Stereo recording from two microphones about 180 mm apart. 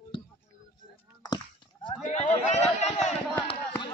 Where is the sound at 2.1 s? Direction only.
40° left (ahead or behind).